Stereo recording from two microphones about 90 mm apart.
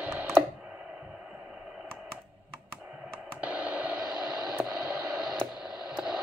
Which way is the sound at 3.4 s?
15° right (ahead or behind).